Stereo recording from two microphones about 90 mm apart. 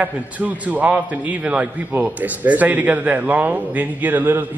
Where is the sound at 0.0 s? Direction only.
20° right (ahead or behind).